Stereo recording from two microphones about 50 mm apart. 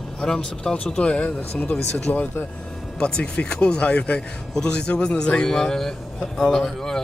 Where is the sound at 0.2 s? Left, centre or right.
Centre.